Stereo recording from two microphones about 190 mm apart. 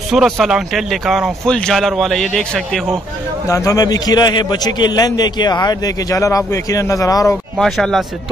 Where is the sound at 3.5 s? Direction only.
15° left (ahead or behind).